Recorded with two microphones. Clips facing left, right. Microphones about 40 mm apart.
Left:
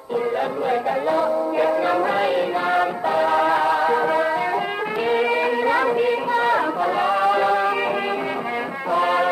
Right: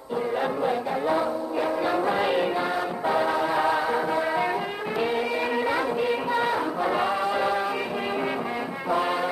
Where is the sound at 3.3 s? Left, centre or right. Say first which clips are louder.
Left 7 dB; left.